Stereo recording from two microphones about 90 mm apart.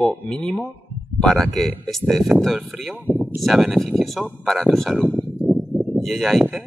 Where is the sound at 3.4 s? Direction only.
Centre (ahead or behind).